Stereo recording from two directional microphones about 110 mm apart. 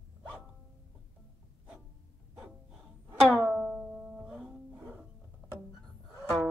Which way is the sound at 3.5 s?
10° right (ahead or behind).